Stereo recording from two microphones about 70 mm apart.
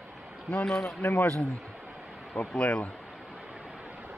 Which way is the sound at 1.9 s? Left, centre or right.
Centre.